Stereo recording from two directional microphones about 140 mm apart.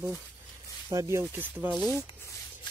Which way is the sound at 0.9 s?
20° right (ahead or behind).